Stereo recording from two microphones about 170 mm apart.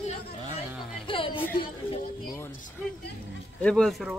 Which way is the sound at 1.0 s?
30° left (ahead or behind).